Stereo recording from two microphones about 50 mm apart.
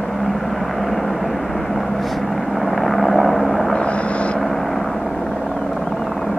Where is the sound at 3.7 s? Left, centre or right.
Left.